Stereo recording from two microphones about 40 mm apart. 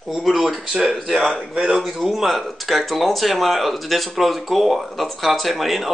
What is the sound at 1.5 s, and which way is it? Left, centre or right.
Speech, right.